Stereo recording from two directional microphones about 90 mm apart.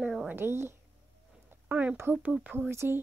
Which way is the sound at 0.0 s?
5° right (ahead or behind).